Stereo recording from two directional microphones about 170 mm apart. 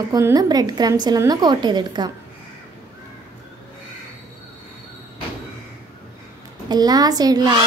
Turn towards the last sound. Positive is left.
turn(degrees=-25)  # may be behind; listen again after turning